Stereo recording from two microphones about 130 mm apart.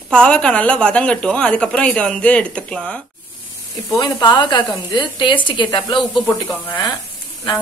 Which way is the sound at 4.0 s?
35° left (ahead or behind).